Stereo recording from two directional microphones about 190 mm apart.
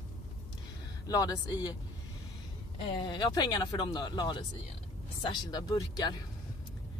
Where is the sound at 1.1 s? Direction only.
20° left (ahead or behind).